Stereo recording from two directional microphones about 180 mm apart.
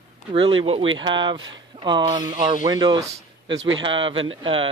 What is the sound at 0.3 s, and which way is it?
Speech, 30° right (ahead or behind).